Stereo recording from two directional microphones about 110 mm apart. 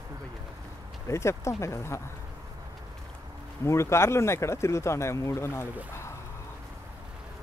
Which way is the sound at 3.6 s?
25° left (ahead or behind).